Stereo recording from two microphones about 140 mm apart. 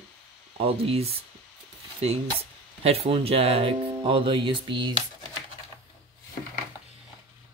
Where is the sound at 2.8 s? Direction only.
45° right (ahead or behind).